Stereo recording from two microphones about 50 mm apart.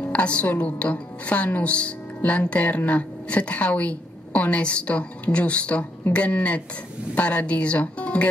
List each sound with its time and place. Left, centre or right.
0.0 s a woman's voice: left